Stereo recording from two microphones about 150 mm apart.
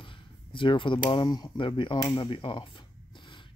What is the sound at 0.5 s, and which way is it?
Speech, 35° left (ahead or behind).